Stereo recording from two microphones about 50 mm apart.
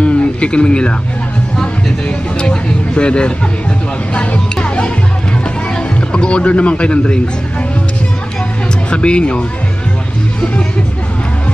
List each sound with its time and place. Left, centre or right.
0.0 s a sound: left
1.6 s speech: left
4.1 s music: left
5.9 s speech: left
8.9 s speech: left